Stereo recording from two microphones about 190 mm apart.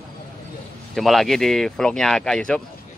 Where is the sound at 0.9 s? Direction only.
Centre (ahead or behind).